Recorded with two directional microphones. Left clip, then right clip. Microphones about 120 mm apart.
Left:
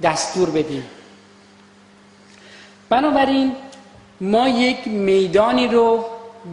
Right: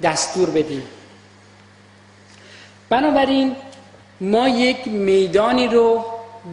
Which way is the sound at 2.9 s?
25° left (ahead or behind).